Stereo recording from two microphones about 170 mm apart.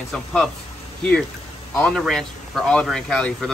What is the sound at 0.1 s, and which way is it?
Speech, centre (ahead or behind).